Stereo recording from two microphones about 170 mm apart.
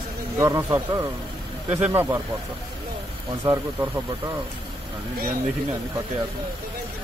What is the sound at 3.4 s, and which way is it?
Speech, 15° right (ahead or behind).